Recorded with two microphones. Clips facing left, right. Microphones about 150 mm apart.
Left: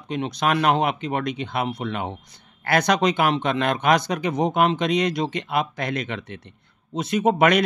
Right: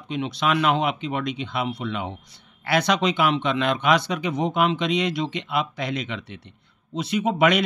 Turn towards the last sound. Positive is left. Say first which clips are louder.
# left 2 dB
turn(degrees=45)  # may be behind; listen again after turning